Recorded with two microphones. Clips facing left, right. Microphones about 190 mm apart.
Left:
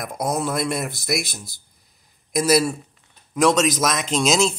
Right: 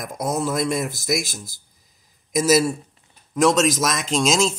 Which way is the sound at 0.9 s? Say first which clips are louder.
Right 1 dB; 45° right (ahead or behind).